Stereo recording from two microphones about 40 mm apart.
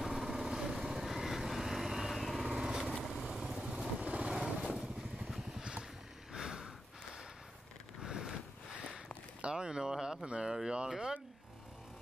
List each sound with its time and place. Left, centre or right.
0.0 s vehicle: centre
2.5 s vehicle: centre
3.3 s vehicle: centre
3.7 s vehicle: right
4.3 s vehicle: centre
6.3 s a sound: centre
8.0 s a sound: centre
9.4 s speech: right
10.2 s speech: right
10.9 s speech: centre